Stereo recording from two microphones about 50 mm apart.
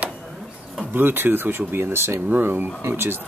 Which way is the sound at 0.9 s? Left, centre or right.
Right.